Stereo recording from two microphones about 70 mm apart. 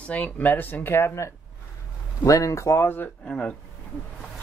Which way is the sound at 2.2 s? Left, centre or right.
Left.